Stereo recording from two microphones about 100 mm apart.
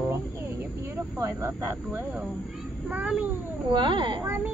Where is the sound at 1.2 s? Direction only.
30° right (ahead or behind).